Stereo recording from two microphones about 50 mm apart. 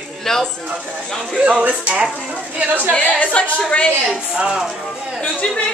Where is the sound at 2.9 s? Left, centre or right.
Left.